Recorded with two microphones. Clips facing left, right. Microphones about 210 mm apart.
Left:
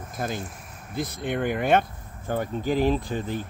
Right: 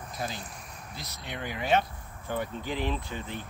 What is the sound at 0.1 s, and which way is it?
Speech, 50° left (ahead or behind).